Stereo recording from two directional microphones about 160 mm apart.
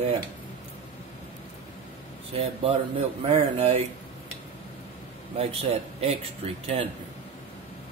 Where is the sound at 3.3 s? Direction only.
40° right (ahead or behind).